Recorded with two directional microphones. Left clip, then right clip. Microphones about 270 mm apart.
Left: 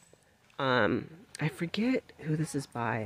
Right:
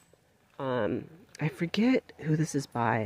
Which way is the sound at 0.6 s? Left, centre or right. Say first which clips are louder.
Left 3 dB; centre.